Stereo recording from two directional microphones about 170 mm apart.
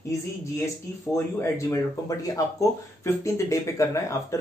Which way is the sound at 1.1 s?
15° left (ahead or behind).